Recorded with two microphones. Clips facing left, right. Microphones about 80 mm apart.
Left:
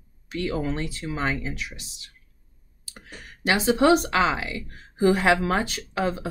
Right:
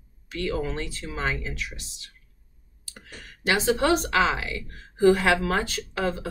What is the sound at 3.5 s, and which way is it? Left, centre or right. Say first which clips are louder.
Speech: left 3 dB; centre.